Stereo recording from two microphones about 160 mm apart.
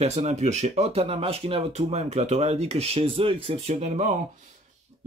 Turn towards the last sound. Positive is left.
turn(degrees=-45)  # may be behind; listen again after turning